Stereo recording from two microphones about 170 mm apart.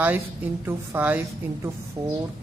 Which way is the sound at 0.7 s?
10° right (ahead or behind).